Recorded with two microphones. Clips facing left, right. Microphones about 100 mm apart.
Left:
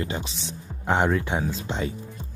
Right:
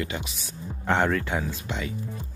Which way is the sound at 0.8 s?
15° left (ahead or behind).